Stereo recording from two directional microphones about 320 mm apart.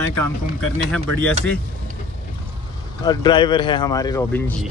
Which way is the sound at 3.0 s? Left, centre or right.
Centre.